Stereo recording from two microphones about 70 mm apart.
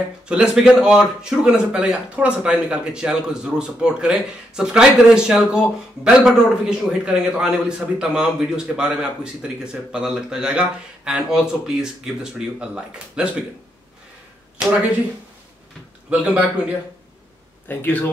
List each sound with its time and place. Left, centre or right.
0.3 s speech: centre
16.1 s speech: centre
17.6 s speech: left